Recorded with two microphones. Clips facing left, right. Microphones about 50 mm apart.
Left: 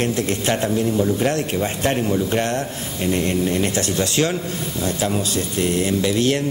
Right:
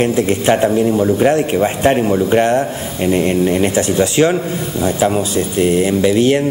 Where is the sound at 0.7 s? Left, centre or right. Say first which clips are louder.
Right 6 dB; right.